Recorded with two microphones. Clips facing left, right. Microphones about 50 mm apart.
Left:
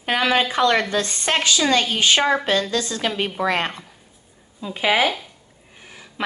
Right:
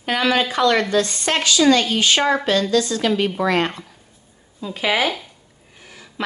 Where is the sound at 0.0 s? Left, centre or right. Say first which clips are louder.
Even; left.